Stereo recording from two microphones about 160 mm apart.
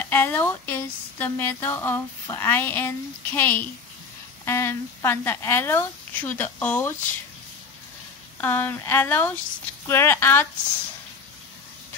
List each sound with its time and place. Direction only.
0.0 s a woman's voice: 10° left (ahead or behind)
8.4 s a woman's voice: 10° left (ahead or behind)